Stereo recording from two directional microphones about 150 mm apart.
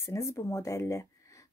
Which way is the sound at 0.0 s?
20° left (ahead or behind).